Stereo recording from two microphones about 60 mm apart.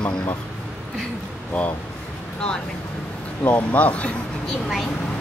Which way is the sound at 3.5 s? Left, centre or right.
Left.